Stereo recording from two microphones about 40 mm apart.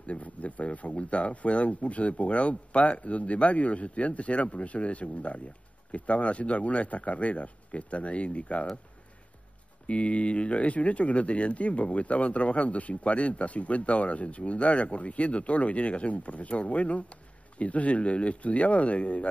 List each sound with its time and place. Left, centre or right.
0.0 s speech: left
9.8 s speech: left